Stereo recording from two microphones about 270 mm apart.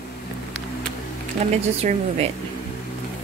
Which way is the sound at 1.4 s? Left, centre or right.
Right.